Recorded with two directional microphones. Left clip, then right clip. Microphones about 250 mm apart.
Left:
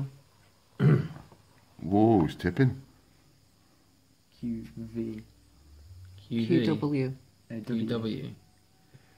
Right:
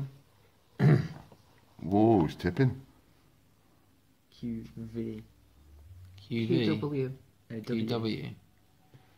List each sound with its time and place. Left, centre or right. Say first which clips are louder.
0.7 s a sound: even; right
1.8 s a sound: left 1 dB; centre
4.4 s speech: left 3 dB; centre
6.2 s speech: left 3 dB; right
6.6 s speech: left 2 dB; left
7.4 s speech: left 1 dB; centre
7.8 s speech: left 1 dB; right